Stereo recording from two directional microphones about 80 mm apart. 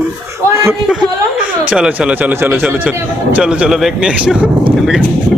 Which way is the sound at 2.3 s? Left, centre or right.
Right.